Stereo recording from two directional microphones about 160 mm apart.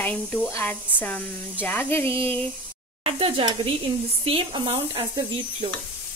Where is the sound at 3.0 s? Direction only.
35° right (ahead or behind).